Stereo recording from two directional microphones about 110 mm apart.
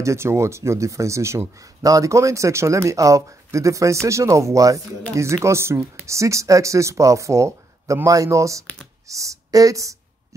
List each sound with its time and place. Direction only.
0.0 s speech: 25° right (ahead or behind)